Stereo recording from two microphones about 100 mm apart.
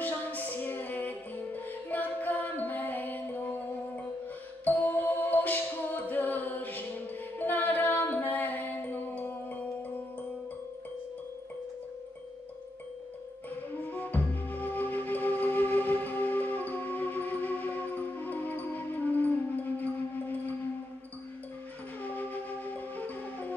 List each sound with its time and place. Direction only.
0.0 s music: 15° left (ahead or behind)
13.7 s music: 15° left (ahead or behind)
22.0 s music: 15° left (ahead or behind)